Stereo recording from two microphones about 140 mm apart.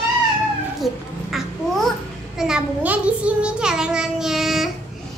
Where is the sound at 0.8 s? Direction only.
Centre (ahead or behind).